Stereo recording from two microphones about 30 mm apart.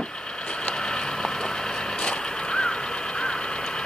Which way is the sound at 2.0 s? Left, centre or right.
Left.